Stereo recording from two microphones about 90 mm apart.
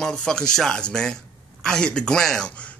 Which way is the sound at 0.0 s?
10° left (ahead or behind).